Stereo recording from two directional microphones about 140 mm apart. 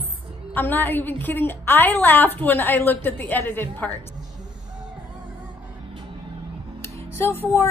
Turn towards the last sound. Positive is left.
turn(degrees=15)  # may be behind; listen again after turning